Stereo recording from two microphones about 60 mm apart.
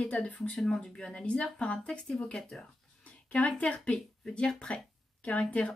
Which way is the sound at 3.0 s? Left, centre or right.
Left.